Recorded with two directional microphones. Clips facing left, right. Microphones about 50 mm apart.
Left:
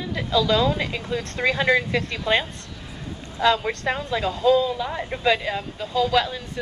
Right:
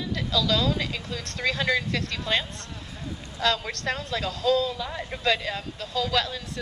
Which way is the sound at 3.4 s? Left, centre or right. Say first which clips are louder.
Left 6 dB; centre.